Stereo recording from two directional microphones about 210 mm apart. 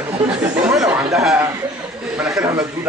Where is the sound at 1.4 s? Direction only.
10° right (ahead or behind).